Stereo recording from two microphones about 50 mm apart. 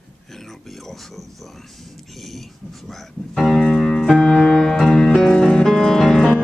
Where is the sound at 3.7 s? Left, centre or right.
Centre.